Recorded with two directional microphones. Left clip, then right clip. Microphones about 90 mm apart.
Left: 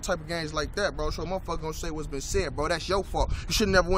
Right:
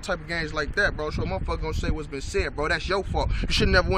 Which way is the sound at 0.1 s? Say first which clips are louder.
Right 2 dB; 25° left (ahead or behind).